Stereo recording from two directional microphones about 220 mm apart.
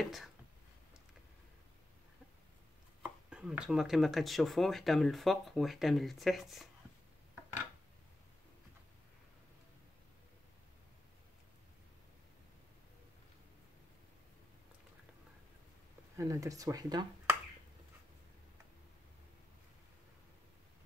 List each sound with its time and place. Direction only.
0.0 s speech: centre (ahead or behind)
3.0 s speech: 5° right (ahead or behind)
16.2 s speech: 15° right (ahead or behind)